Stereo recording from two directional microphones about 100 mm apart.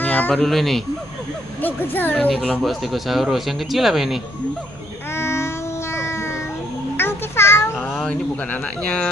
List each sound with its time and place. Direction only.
0.0 s a sound: 15° left (ahead or behind)
0.4 s speech: centre (ahead or behind)
1.6 s a woman's voice: 20° left (ahead or behind)
2.6 s speech: centre (ahead or behind)
5.1 s music: 25° left (ahead or behind)
7.0 s a sound: 25° left (ahead or behind)
7.8 s cat: 5° left (ahead or behind)
8.5 s speech: 10° left (ahead or behind)